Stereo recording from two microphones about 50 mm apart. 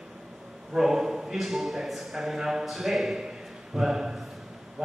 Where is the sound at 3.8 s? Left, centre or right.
Centre.